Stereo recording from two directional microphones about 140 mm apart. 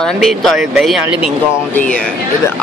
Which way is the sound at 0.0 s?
Centre (ahead or behind).